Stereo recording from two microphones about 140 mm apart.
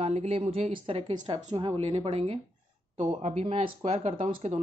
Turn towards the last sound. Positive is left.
turn(degrees=-50)  # may be behind; listen again after turning